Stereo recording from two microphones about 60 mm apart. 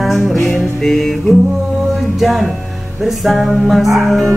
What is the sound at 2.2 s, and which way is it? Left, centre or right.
Music, centre.